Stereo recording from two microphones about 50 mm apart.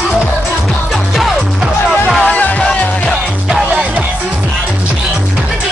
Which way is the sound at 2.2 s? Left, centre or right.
Left.